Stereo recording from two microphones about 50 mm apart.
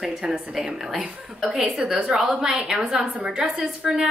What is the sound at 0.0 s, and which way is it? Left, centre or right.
A woman's voice, centre.